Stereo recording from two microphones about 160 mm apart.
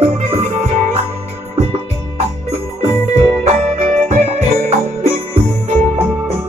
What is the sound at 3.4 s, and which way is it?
Music, 45° right (ahead or behind).